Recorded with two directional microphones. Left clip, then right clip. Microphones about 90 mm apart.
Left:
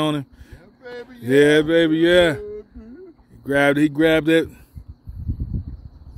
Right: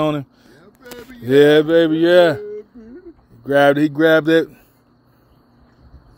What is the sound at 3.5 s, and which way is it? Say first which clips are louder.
Speech: right 4 dB; 25° left (ahead or behind).